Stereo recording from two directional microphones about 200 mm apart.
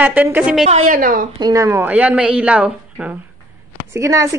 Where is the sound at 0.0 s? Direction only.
10° right (ahead or behind).